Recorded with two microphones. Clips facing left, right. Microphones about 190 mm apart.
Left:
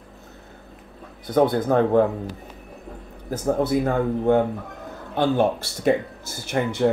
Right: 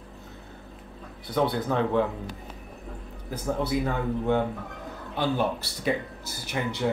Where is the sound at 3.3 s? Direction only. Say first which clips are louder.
Left 6 dB; 45° left (ahead or behind).